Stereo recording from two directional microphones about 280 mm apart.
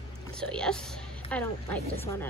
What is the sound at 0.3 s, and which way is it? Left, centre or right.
A woman's voice, centre.